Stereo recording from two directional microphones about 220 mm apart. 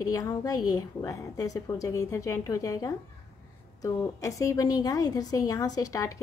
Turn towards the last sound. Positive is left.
turn(degrees=15)  # may be behind; listen again after turning